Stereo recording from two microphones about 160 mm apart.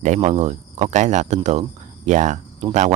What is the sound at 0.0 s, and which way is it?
Speech, 45° right (ahead or behind).